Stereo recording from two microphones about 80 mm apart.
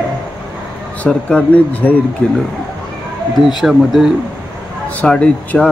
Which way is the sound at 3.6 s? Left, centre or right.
Centre.